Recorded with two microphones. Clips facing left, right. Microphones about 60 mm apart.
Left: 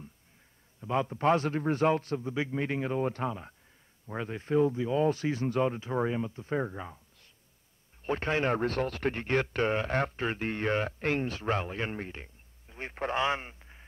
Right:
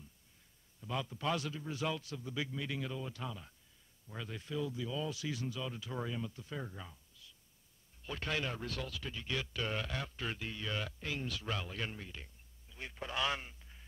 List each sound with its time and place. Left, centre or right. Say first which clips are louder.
0.7 s a man's voice: left 10 dB; left